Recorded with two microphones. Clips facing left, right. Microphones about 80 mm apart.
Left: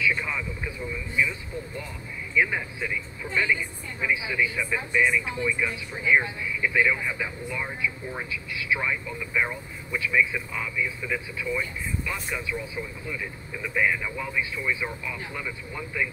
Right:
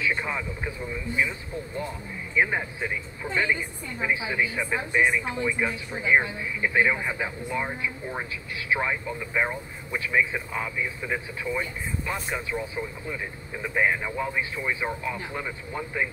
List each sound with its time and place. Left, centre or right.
0.0 s a man's voice: right
2.3 s a man's voice: right